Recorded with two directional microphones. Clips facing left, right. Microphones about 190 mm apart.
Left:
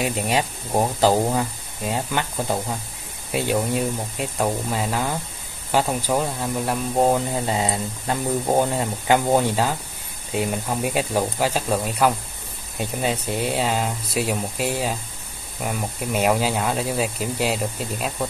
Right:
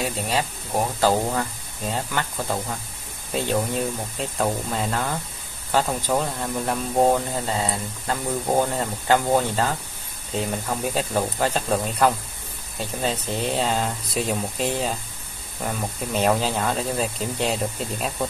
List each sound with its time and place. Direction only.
0.0 s speech: 15° left (ahead or behind); by 18.3 s centre (ahead or behind)